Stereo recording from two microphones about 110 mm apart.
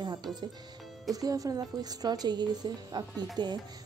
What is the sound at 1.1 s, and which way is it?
Speech, 35° right (ahead or behind).